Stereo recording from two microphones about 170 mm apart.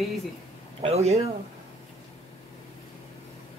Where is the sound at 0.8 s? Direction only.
35° right (ahead or behind).